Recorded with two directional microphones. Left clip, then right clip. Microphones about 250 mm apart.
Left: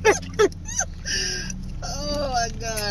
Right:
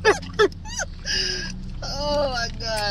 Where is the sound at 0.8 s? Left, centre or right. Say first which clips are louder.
Right 1 dB; right.